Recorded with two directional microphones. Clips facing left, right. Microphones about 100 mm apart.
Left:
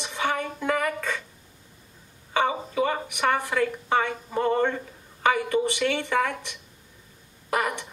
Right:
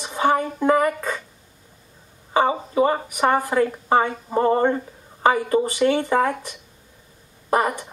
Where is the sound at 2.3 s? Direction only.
30° right (ahead or behind).